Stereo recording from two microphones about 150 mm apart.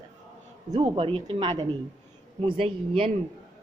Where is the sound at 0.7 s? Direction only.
40° right (ahead or behind).